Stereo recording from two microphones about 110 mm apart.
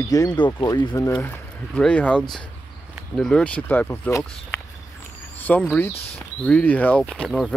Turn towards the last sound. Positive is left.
turn(degrees=5)  # may be behind; listen again after turning